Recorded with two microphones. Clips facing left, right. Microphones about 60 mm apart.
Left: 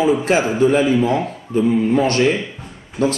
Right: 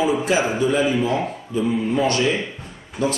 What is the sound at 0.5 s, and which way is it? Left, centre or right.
Speech, left.